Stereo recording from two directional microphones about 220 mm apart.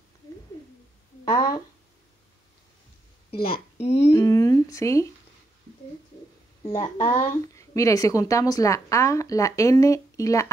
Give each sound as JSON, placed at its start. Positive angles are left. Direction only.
{"t": 1.2, "sound": "speech", "side_deg": 15}
{"t": 3.3, "sound": "a woman's voice", "side_deg": 45}
{"t": 4.1, "sound": "a woman's voice", "side_deg": 15}
{"t": 6.6, "sound": "a woman's voice", "side_deg": 25}